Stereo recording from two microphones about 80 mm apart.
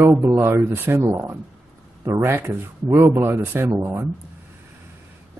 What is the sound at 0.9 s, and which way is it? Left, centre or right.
Speech, right.